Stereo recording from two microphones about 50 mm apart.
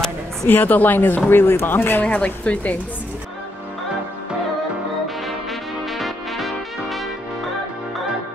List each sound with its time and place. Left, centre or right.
0.5 s speech: left
1.3 s speech: left
2.0 s speech: left
5.0 s music: centre